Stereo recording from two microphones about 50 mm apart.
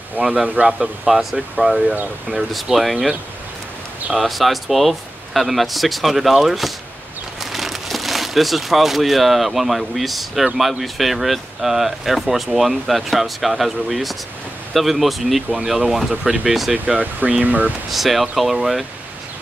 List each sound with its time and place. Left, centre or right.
0.2 s speech: right
0.6 s speech: centre
4.2 s speech: centre
16.7 s speech: right
17.9 s speech: centre